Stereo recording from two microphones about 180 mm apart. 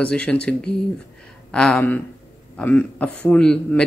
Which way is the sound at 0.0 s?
5° left (ahead or behind).